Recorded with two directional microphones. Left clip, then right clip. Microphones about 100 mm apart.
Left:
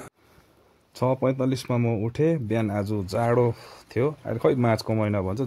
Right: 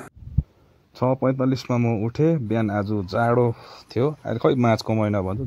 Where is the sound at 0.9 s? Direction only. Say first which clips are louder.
Right 2 dB; 25° right (ahead or behind).